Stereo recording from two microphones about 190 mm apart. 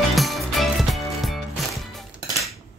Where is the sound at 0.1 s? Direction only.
Centre (ahead or behind).